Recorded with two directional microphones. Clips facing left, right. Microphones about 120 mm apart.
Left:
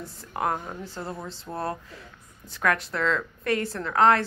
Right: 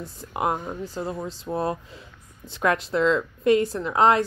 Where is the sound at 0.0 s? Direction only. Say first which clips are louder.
Right 2 dB; 15° right (ahead or behind).